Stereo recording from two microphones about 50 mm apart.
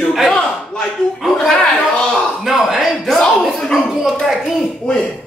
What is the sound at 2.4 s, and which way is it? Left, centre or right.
Chuckle, centre.